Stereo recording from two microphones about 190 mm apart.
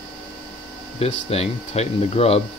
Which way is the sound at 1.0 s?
30° left (ahead or behind).